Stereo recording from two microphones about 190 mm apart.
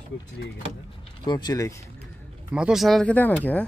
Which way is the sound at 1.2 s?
20° left (ahead or behind).